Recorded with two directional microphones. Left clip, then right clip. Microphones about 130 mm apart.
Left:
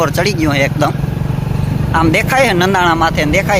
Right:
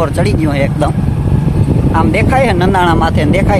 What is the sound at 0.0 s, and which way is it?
Speech, 15° right (ahead or behind).